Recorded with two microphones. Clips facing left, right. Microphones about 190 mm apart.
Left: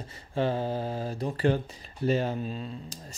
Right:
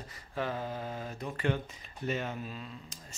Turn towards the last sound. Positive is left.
turn(degrees=35)  # may be behind; listen again after turning